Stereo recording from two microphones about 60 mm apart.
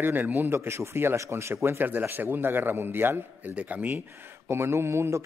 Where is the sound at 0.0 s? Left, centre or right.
Right.